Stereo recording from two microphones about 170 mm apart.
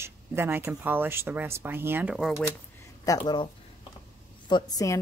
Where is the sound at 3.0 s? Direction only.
25° left (ahead or behind).